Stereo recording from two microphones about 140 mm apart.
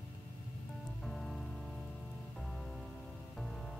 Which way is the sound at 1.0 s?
Centre (ahead or behind).